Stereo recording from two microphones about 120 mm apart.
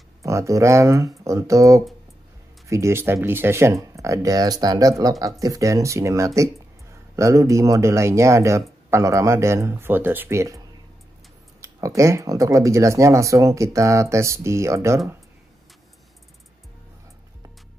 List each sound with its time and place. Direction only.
0.2 s speech: 25° right (ahead or behind)
11.6 s speech: 25° right (ahead or behind)